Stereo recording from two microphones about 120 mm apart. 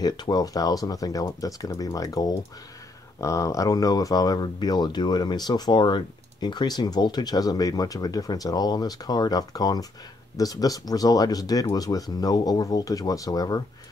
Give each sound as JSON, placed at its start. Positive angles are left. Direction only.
{"t": 0.0, "sound": "speech", "side_deg": 35}